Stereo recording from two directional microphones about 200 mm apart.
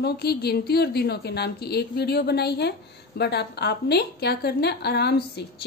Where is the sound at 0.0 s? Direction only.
55° left (ahead or behind).